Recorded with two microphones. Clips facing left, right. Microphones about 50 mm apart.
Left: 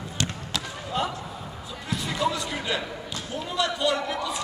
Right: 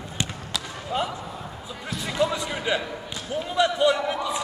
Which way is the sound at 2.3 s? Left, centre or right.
Centre.